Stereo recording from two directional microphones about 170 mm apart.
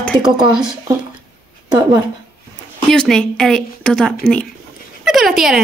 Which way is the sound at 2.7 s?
5° left (ahead or behind).